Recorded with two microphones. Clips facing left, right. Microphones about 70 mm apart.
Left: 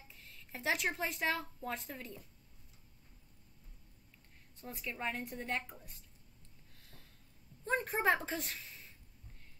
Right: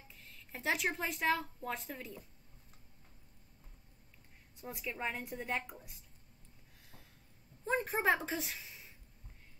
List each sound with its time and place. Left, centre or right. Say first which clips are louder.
0.1 s speech: even; centre
4.6 s a woman's voice: right 1 dB; centre
7.6 s a woman's voice: even; centre